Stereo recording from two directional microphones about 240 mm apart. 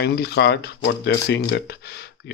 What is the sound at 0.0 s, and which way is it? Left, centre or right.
Speech, left.